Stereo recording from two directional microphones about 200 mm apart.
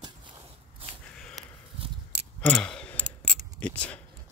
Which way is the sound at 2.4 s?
5° left (ahead or behind).